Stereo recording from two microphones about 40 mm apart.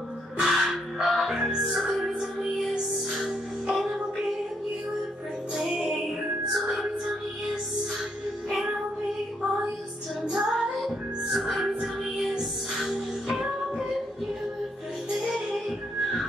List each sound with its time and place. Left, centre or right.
0.4 s crow: centre
1.0 s music: centre
5.5 s music: centre
10.2 s music: centre
15.0 s music: centre